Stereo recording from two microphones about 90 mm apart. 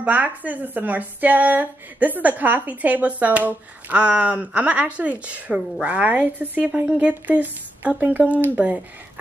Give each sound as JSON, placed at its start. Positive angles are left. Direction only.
{"t": 0.0, "sound": "speech", "side_deg": -15}